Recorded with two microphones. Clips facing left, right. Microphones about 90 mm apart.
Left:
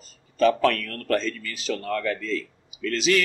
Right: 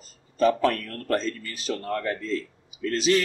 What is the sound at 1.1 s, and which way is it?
A man's voice, 35° right (ahead or behind).